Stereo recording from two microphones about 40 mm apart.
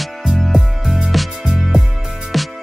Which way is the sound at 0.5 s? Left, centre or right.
Centre.